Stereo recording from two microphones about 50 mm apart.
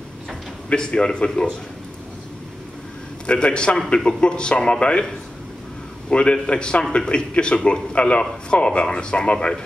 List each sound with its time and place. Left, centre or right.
0.7 s a man's voice: centre
3.3 s a man's voice: centre